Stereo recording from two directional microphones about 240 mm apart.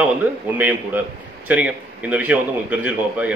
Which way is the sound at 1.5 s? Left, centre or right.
Centre.